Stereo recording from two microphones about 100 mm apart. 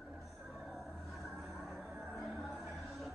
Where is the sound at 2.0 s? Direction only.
Centre (ahead or behind).